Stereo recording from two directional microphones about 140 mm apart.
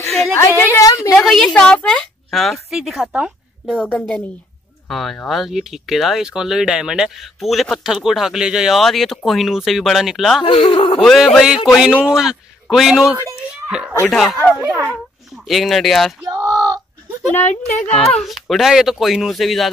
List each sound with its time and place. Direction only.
0.4 s a sound: 20° left (ahead or behind)
1.1 s speech: centre (ahead or behind)
3.7 s a woman's voice: 10° left (ahead or behind)
10.4 s speech: 35° left (ahead or behind)
11.0 s a child's voice: centre (ahead or behind)
16.2 s a sound: 20° right (ahead or behind)
17.5 s speech: 55° left (ahead or behind)
18.1 s speech: centre (ahead or behind)